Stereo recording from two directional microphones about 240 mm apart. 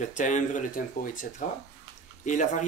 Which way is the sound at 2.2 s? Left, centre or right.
Left.